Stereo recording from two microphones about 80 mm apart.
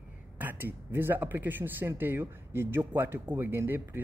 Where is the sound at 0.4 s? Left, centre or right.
Right.